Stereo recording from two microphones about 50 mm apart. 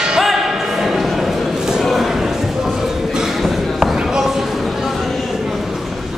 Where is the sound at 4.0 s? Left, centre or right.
Centre.